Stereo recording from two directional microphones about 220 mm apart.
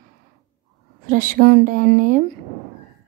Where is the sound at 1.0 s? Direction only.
40° right (ahead or behind).